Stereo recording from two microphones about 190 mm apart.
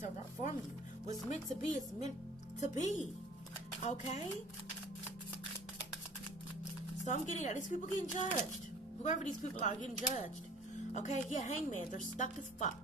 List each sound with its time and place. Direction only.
1.0 s speech: 40° left (ahead or behind)
7.1 s speech: 40° left (ahead or behind)